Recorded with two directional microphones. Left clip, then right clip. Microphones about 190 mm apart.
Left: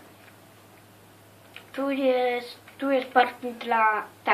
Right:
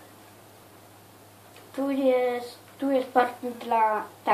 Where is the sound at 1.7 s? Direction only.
25° left (ahead or behind).